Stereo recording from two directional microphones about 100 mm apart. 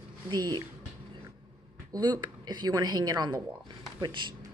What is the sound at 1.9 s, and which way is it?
A woman's voice, 45° right (ahead or behind).